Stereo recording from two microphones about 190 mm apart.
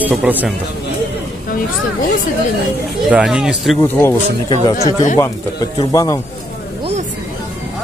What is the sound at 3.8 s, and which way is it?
Speech, 10° left (ahead or behind).